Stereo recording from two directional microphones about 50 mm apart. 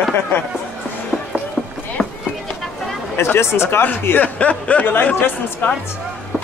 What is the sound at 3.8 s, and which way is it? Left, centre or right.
Speech, left.